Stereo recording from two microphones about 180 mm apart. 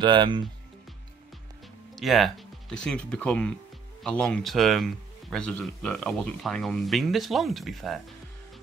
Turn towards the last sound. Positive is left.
turn(degrees=0)  # may be behind; listen again after turning